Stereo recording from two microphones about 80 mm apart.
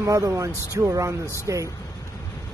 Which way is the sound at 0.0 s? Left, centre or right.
Right.